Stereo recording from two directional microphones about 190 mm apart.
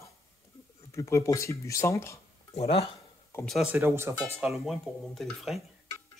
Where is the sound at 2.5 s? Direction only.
30° left (ahead or behind).